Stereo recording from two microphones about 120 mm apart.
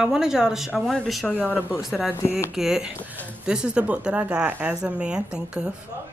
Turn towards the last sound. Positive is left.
turn(degrees=-5)  # may be behind; listen again after turning